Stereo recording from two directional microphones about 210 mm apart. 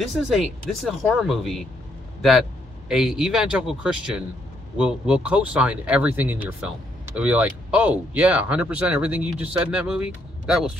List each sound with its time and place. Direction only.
0.1 s speech: centre (ahead or behind)
2.9 s speech: centre (ahead or behind)